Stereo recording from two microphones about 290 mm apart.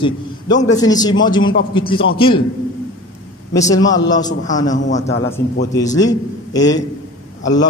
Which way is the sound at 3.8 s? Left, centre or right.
Left.